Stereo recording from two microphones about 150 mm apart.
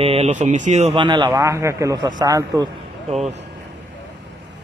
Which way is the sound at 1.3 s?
20° right (ahead or behind).